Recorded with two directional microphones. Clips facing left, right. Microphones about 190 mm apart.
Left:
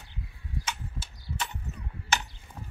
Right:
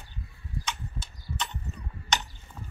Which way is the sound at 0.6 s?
5° left (ahead or behind).